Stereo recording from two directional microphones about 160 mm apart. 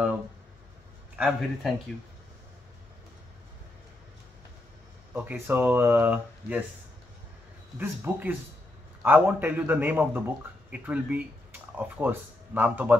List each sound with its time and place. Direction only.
1.1 s speech: 5° right (ahead or behind)
5.1 s speech: 10° right (ahead or behind)
7.7 s speech: 15° right (ahead or behind)